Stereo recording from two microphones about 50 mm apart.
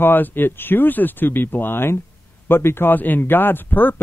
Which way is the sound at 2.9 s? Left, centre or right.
Left.